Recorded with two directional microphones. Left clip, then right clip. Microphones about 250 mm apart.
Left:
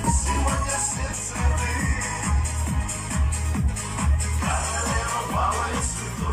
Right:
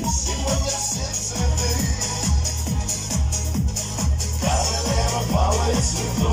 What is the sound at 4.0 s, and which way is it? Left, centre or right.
Music, right.